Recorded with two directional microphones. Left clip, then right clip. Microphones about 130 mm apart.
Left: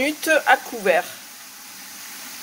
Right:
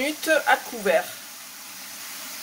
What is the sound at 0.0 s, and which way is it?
Speech, 10° left (ahead or behind).